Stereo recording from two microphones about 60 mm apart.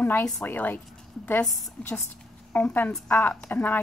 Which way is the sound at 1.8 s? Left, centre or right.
Centre.